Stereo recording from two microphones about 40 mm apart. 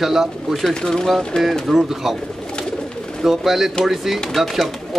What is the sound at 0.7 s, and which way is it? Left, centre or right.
Speech, centre.